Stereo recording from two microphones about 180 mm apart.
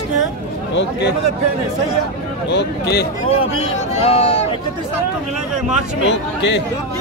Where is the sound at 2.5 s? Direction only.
70° left (ahead or behind).